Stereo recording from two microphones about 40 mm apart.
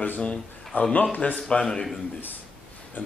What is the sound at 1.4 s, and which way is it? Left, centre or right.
Speech, left.